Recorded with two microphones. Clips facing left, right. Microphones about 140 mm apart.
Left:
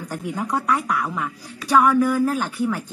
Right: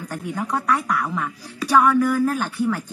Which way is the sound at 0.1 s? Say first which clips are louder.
Left 1 dB; 10° left (ahead or behind).